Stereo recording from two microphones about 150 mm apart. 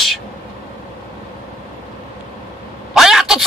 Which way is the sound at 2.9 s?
5° right (ahead or behind).